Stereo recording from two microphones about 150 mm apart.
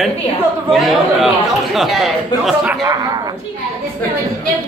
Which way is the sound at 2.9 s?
25° right (ahead or behind).